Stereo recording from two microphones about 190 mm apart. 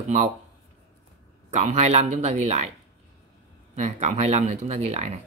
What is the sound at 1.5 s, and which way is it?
Speech, 35° right (ahead or behind).